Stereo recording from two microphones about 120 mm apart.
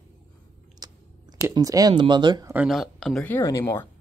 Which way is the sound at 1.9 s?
40° right (ahead or behind).